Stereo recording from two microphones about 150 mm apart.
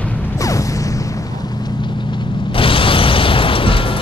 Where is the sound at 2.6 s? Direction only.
35° left (ahead or behind).